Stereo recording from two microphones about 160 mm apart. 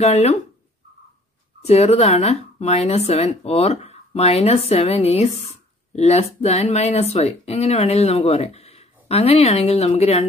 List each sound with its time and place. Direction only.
0.0 s speech: 40° left (ahead or behind)
1.7 s speech: 40° left (ahead or behind)